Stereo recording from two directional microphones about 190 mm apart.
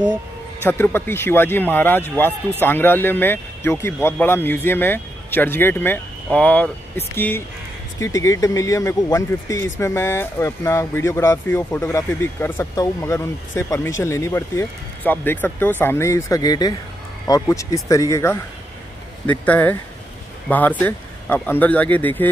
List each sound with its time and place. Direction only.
0.7 s speech: 10° left (ahead or behind)